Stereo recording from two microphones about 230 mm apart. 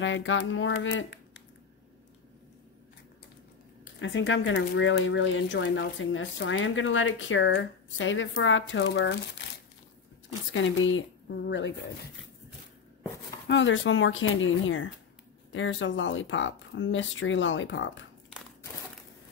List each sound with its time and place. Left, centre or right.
0.0 s speech: left
4.0 s speech: left
10.5 s speech: left
13.5 s speech: left